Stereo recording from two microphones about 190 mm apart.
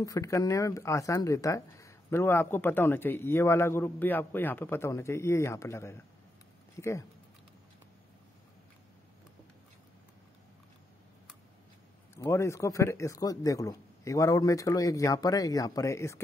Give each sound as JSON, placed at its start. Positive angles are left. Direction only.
{"t": 0.0, "sound": "speech", "side_deg": 20}
{"t": 12.2, "sound": "speech", "side_deg": 15}